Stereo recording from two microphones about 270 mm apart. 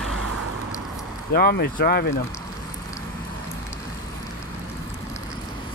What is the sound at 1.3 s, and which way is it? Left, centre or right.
Speech, left.